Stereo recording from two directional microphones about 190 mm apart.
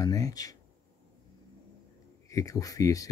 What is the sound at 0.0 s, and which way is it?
Speech, 20° left (ahead or behind).